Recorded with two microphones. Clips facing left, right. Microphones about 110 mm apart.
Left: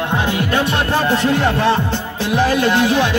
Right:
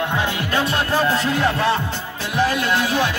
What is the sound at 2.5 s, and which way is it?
Speech, 25° left (ahead or behind).